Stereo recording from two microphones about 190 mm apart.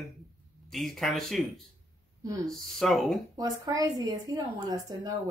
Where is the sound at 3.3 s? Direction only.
20° right (ahead or behind).